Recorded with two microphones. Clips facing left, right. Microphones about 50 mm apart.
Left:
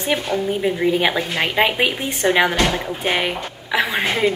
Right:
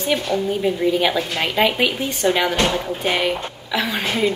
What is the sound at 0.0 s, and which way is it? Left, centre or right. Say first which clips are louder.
A woman's voice: even; left.